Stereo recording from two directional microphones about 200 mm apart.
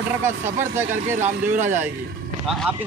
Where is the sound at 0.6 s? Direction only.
10° right (ahead or behind).